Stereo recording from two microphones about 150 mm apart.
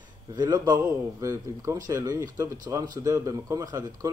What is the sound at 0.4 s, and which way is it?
Speech, 30° right (ahead or behind).